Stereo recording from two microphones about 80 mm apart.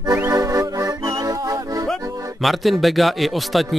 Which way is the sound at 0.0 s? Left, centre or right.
Right.